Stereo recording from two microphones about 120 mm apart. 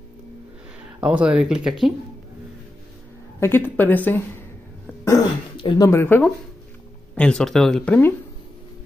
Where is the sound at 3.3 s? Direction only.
20° left (ahead or behind).